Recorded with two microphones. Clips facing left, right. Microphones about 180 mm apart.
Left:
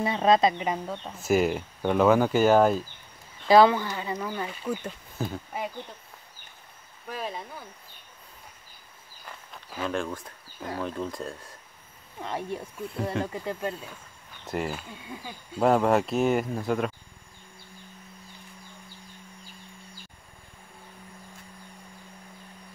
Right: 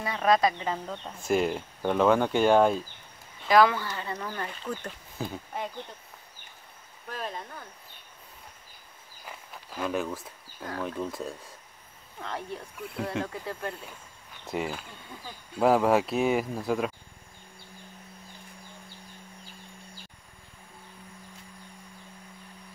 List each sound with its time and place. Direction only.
0.0 s speech: 25° left (ahead or behind); by 2.8 s 5° left (ahead or behind)
3.4 s speech: 25° left (ahead or behind); by 5.7 s 5° left (ahead or behind)
7.1 s speech: 5° left (ahead or behind)
9.2 s a sound: 5° right (ahead or behind)
10.8 s speech: centre (ahead or behind)
12.2 s speech: 15° left (ahead or behind)
14.4 s speech: centre (ahead or behind)